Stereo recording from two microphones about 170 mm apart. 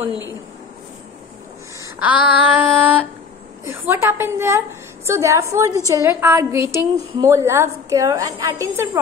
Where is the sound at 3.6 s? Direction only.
15° right (ahead or behind).